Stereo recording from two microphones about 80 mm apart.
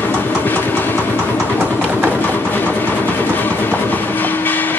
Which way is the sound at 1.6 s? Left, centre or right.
Right.